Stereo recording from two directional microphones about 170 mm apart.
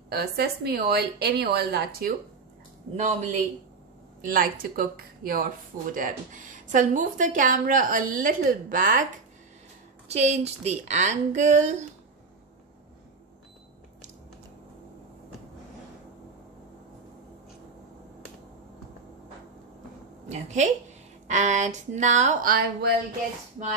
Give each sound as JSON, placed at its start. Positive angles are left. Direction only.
{"t": 0.1, "sound": "a woman's voice", "side_deg": -70}
{"t": 3.0, "sound": "speech", "side_deg": -40}
{"t": 4.2, "sound": "speech", "side_deg": -55}
{"t": 10.0, "sound": "a woman's voice", "side_deg": -40}
{"t": 20.2, "sound": "a woman's voice", "side_deg": -45}